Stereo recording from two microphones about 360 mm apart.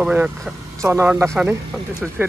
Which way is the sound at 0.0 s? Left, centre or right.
Centre.